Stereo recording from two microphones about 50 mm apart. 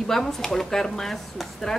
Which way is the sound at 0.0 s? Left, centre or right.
Centre.